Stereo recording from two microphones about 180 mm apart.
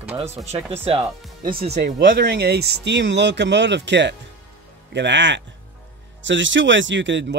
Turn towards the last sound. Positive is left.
turn(degrees=-85)